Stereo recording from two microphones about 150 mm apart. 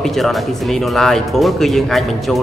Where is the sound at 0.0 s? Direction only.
Centre (ahead or behind).